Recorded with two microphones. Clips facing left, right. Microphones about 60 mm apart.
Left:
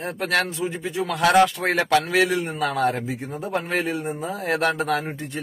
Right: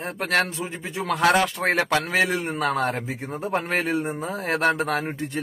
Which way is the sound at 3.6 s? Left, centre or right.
Right.